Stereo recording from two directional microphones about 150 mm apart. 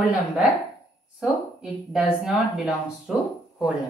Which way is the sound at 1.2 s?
5° right (ahead or behind).